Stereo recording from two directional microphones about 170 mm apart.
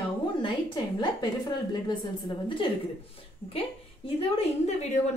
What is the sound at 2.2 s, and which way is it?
Speech, 30° left (ahead or behind).